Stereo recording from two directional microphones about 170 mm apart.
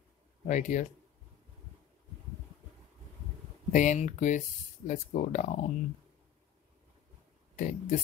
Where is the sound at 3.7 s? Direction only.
45° left (ahead or behind).